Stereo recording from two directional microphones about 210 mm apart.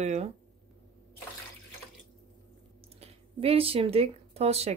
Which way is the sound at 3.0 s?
25° right (ahead or behind).